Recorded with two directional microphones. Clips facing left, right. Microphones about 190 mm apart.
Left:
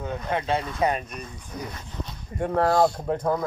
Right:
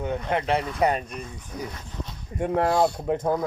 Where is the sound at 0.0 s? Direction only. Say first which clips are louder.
Right 2 dB; 30° right (ahead or behind).